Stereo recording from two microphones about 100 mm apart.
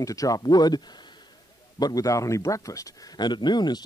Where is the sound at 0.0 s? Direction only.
35° left (ahead or behind).